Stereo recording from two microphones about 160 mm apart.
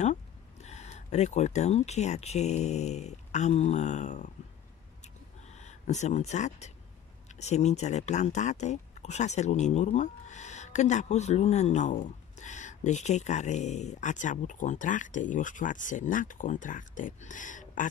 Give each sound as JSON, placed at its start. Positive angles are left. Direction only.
{"t": 0.0, "sound": "speech", "side_deg": 45}
{"t": 5.5, "sound": "speech", "side_deg": 45}